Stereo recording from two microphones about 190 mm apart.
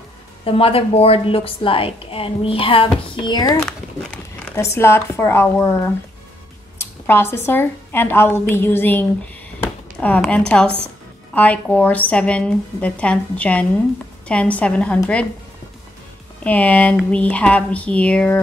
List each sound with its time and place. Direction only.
0.5 s a woman's voice: 30° left (ahead or behind)
3.5 s a woman's voice: 5° left (ahead or behind)
16.4 s speech: 10° left (ahead or behind)